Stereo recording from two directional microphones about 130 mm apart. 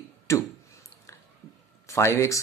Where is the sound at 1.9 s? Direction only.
20° left (ahead or behind).